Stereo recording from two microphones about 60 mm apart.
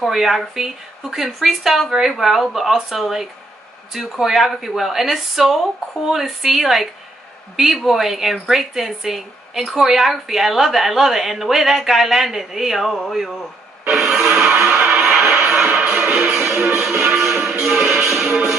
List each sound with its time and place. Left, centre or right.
0.0 s speech: centre
13.8 s music: centre